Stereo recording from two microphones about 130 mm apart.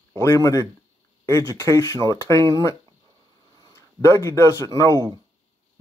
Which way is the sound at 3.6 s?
20° left (ahead or behind).